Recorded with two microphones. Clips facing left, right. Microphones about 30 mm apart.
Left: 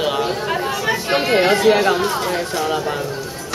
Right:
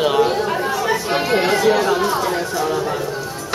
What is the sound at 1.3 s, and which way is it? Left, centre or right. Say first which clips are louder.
Speech: left 3 dB; left.